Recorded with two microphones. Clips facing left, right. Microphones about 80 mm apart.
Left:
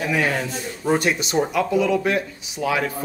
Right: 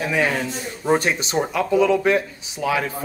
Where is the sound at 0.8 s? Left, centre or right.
Right.